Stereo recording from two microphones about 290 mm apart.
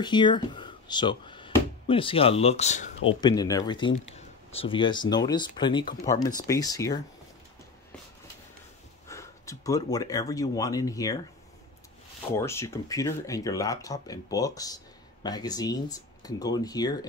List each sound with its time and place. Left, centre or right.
0.0 s speech: centre
9.0 s speech: centre
12.4 s speech: centre